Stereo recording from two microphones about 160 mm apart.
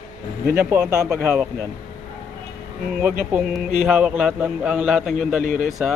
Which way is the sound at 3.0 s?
10° right (ahead or behind).